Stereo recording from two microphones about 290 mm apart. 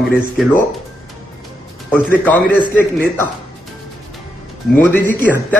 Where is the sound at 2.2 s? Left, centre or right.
Centre.